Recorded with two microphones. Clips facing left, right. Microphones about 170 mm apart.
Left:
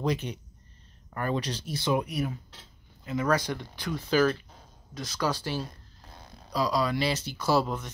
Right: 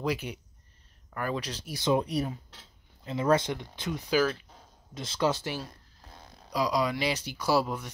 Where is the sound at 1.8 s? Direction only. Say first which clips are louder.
Right 2 dB; 20° right (ahead or behind).